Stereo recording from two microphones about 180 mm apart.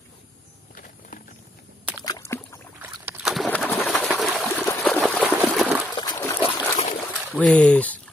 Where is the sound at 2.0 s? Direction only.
15° left (ahead or behind).